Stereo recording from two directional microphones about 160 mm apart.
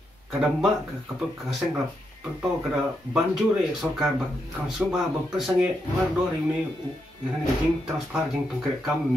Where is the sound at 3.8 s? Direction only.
Centre (ahead or behind).